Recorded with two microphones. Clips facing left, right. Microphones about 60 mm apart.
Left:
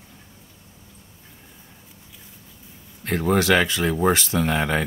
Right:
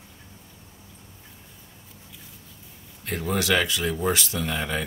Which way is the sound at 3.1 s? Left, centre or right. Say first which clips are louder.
Left 6 dB; left.